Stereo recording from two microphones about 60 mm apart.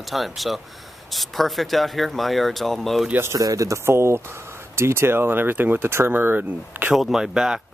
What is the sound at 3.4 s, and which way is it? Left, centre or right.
Speech, right.